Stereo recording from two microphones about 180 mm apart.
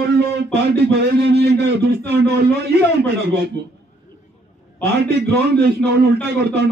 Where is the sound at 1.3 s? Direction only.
70° right (ahead or behind).